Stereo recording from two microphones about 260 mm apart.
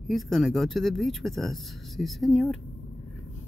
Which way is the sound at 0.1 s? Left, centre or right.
Centre.